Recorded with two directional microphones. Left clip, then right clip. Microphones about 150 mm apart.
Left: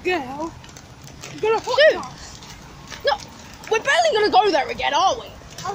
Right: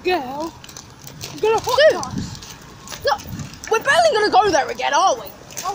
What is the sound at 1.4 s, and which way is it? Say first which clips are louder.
Speech: right 3 dB; 25° right (ahead or behind).